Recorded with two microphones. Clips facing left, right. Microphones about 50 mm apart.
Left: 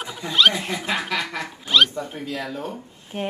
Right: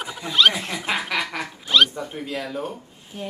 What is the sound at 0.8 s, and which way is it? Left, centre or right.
Chuckle, right.